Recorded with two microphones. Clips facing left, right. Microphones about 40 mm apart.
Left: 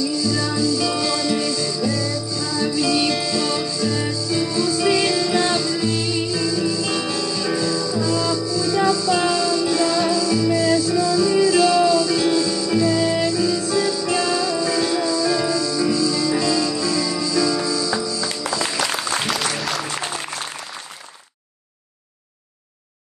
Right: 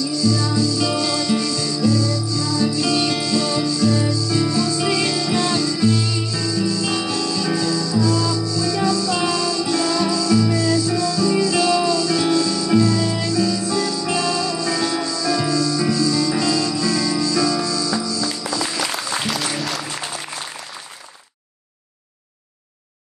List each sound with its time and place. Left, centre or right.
0.3 s music: centre
0.7 s music: centre
2.8 s music: centre
3.6 s music: centre
9.3 s music: centre
10.5 s music: centre
11.0 s music: centre
11.5 s music: centre
12.8 s music: centre
13.3 s music: centre
18.8 s music: centre